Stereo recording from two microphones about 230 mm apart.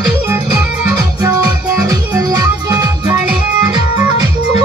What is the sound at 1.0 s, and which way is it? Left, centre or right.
Music, centre.